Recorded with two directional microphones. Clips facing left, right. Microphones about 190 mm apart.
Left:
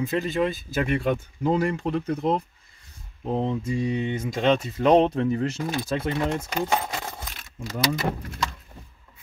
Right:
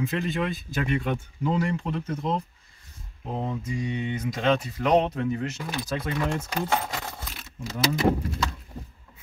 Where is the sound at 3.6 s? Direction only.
35° left (ahead or behind); by 6.8 s 15° left (ahead or behind).